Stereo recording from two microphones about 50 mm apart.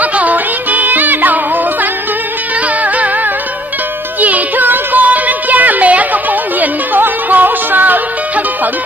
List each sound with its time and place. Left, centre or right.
0.0 s music: right
4.2 s music: right